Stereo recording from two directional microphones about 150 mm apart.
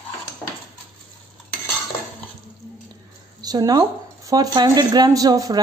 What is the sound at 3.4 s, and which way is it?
Speech, 25° right (ahead or behind).